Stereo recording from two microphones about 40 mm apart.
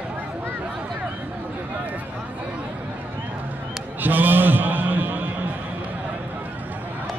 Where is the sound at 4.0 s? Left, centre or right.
Right.